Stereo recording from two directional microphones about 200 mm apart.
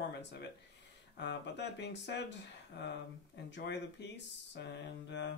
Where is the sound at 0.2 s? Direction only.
60° left (ahead or behind).